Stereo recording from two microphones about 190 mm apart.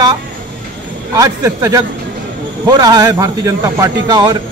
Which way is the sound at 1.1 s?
20° right (ahead or behind).